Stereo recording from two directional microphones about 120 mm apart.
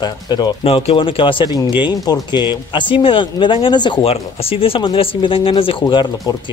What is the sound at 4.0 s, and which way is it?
Speech, 55° left (ahead or behind).